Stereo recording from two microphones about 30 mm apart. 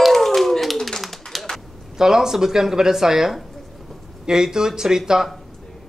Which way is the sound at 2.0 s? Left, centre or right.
Centre.